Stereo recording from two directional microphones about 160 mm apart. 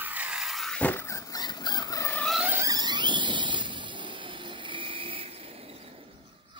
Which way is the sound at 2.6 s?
25° right (ahead or behind).